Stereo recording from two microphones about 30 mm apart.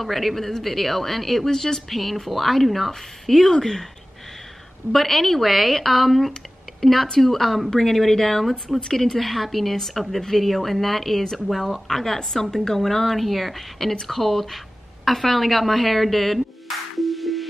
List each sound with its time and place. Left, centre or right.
0.0 s speech: centre
1.5 s speech: centre
1.9 s a woman's voice: centre
4.9 s a woman's voice: centre
16.6 s music: centre